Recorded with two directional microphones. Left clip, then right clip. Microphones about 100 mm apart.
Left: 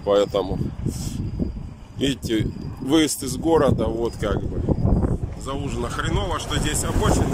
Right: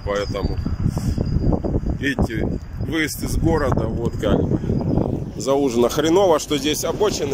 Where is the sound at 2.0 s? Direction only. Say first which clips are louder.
Left 2 dB; 30° left (ahead or behind).